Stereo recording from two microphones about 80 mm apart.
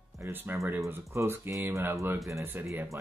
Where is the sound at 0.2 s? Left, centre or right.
Right.